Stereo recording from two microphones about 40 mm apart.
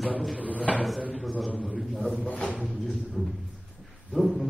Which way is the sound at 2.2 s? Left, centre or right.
Left.